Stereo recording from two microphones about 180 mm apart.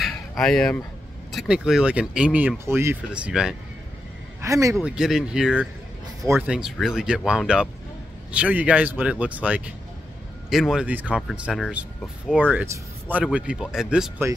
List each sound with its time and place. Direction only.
0.0 s a sound: centre (ahead or behind)
1.3 s speech: 5° right (ahead or behind)
4.4 s speech: 15° right (ahead or behind)
4.7 s speech: 5° right (ahead or behind)